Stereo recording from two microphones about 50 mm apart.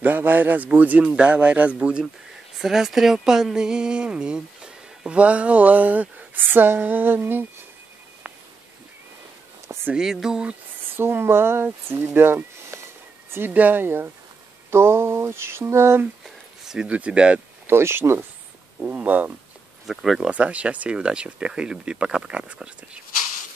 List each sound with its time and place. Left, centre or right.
0.0 s speech: right
1.0 s speech: right
2.6 s speech: centre; by 7.4 s right
9.9 s speech: centre
11.0 s speech: right
12.7 s a sound: right
13.5 s speech: right
14.7 s mantra: right
16.7 s speech: right
17.6 s mantra: right
18.9 s speech: right
19.9 s speech: centre
20.2 s speech: right